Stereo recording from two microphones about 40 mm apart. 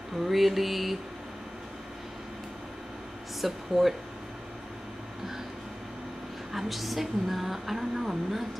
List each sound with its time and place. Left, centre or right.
0.2 s a woman's voice: centre
3.3 s speech: centre
6.5 s a woman's voice: centre